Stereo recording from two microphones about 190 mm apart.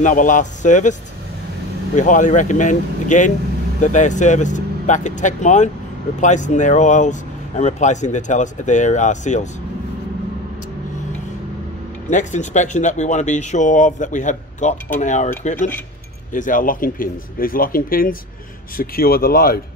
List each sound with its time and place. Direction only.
0.0 s speech: 45° left (ahead or behind)
2.0 s speech: 40° left (ahead or behind)
12.1 s speech: 40° left (ahead or behind)